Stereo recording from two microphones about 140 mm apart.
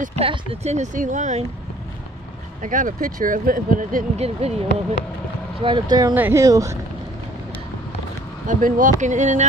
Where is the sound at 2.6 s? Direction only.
65° right (ahead or behind).